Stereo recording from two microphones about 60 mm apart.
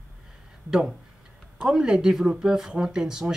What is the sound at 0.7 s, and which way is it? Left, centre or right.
Speech, centre.